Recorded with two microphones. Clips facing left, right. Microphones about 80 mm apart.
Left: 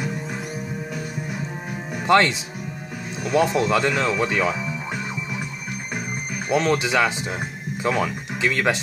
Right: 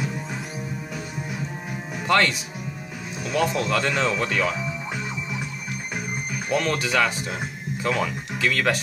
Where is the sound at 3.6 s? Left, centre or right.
Centre.